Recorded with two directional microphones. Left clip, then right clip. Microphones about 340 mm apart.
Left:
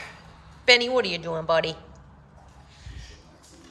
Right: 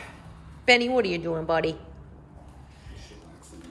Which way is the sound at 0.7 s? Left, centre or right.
Centre.